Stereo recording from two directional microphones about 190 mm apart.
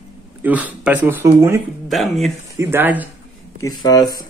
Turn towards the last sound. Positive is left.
turn(degrees=20)  # may be behind; listen again after turning